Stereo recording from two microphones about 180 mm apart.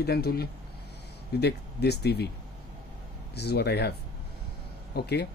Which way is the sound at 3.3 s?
65° left (ahead or behind).